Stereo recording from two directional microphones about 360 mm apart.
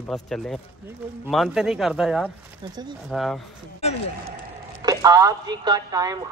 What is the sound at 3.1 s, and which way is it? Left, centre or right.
Speech, centre.